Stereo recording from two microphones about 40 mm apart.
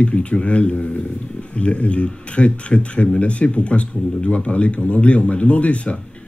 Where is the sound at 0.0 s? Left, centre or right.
Left.